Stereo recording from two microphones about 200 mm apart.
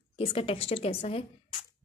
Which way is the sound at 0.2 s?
30° left (ahead or behind).